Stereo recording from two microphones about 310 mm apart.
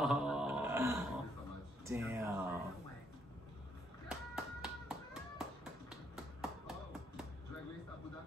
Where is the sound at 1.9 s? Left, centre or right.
Centre.